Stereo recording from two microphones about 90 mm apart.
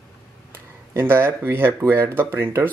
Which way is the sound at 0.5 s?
25° right (ahead or behind).